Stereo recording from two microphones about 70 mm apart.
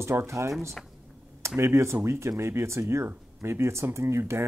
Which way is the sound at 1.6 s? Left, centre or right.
Right.